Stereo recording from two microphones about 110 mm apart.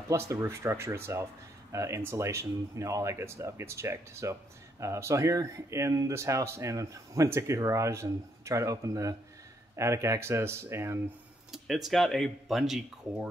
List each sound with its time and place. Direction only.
0.1 s speech: 25° right (ahead or behind)
11.5 s speech: centre (ahead or behind)